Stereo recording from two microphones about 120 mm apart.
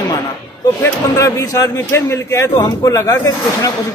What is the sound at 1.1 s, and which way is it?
A man's voice, 25° left (ahead or behind).